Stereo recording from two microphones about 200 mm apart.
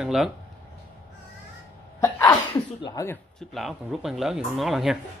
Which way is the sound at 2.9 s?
15° left (ahead or behind).